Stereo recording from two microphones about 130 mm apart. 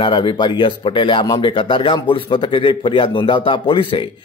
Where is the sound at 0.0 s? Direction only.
40° left (ahead or behind).